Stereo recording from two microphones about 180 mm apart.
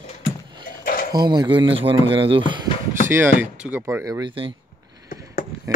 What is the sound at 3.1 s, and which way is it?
Speech, 10° right (ahead or behind).